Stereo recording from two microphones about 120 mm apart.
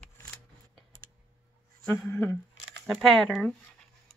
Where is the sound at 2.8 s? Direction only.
Centre (ahead or behind).